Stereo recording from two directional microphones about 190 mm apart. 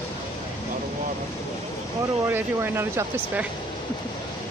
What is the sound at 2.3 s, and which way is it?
Speech, 10° right (ahead or behind).